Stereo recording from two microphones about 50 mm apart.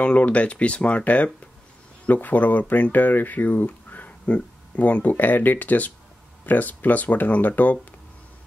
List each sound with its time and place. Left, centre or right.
0.0 s speech: left